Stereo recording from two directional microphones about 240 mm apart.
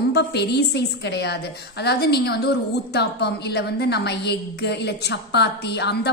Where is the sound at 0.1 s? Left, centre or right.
Left.